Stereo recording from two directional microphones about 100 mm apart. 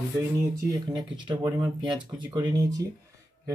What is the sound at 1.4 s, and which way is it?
Speech, 45° right (ahead or behind).